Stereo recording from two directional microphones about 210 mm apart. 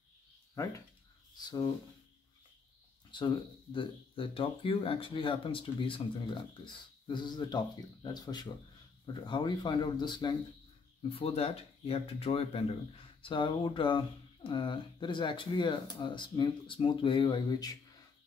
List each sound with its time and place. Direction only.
3.1 s speech: 20° left (ahead or behind)